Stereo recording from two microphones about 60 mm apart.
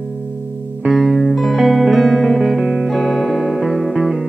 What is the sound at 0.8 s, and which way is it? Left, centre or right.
Music, centre.